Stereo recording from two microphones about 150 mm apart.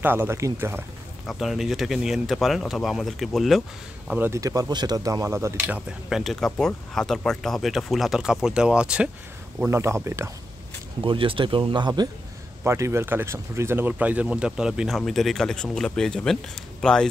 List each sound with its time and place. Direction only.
0.0 s speech: 15° right (ahead or behind)
1.2 s speech: centre (ahead or behind)
4.1 s speech: 15° right (ahead or behind)
5.9 s speech: 5° right (ahead or behind)
11.1 s speech: 35° right (ahead or behind)
12.6 s speech: 20° right (ahead or behind); by 17.1 s 5° left (ahead or behind)